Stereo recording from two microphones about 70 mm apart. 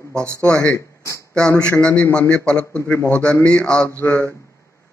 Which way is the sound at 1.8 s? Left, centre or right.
Centre.